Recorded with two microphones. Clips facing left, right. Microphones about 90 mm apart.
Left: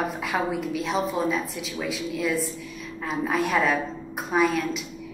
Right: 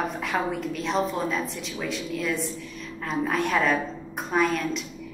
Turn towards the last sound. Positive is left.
turn(degrees=5)  # may be behind; listen again after turning